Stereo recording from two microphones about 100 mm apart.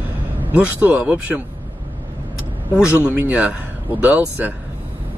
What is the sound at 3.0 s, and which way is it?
Speech, 15° right (ahead or behind).